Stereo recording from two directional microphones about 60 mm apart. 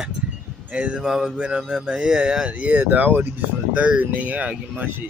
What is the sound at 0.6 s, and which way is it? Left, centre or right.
Speech, centre.